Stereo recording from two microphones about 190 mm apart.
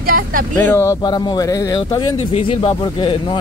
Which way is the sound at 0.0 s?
50° right (ahead or behind).